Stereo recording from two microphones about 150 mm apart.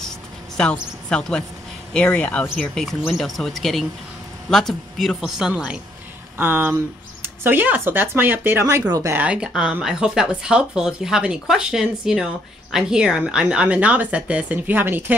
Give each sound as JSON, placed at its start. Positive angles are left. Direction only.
{"t": 0.6, "sound": "a woman's voice", "side_deg": 5}
{"t": 9.1, "sound": "speech", "side_deg": -10}